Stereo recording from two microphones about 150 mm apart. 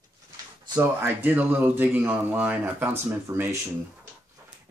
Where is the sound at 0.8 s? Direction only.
10° right (ahead or behind).